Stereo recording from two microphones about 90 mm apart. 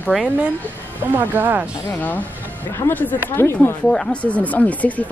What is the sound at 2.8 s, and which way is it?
Speech, 20° left (ahead or behind).